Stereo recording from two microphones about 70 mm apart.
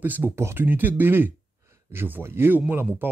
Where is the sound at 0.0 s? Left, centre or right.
Right.